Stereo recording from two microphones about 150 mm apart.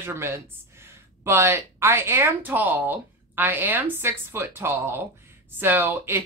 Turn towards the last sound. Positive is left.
turn(degrees=-15)  # may be behind; listen again after turning